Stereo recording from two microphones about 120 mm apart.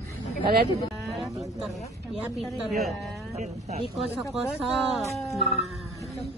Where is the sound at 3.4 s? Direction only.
70° right (ahead or behind).